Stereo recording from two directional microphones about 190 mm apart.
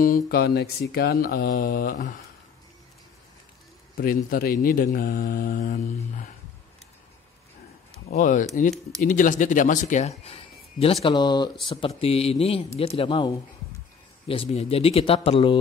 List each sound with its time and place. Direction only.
0.0 s speech: 50° left (ahead or behind)
3.9 s speech: 50° left (ahead or behind)
8.1 s speech: 45° left (ahead or behind); by 15.6 s 30° left (ahead or behind)